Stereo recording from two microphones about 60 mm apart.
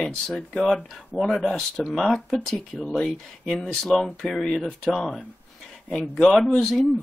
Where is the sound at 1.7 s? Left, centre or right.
Centre.